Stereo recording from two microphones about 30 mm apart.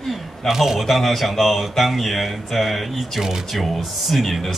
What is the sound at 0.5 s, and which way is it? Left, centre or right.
Speech, centre.